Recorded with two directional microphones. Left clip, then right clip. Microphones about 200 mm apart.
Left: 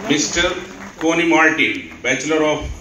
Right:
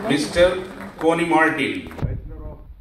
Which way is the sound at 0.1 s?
55° right (ahead or behind).